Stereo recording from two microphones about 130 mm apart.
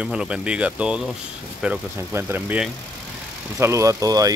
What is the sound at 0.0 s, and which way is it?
Speech, 5° right (ahead or behind).